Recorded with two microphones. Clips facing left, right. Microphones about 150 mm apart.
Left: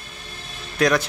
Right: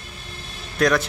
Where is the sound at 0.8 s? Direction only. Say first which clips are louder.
Even; centre (ahead or behind).